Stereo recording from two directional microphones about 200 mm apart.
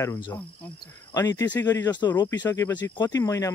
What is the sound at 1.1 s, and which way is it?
Speech, 20° left (ahead or behind).